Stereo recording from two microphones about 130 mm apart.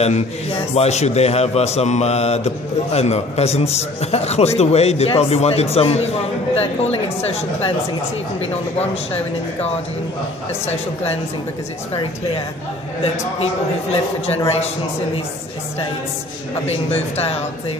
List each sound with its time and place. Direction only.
0.0 s a man's voice: 55° left (ahead or behind)
8.7 s speech: 55° left (ahead or behind)
14.2 s speech: 55° left (ahead or behind)
16.6 s speech: 50° left (ahead or behind)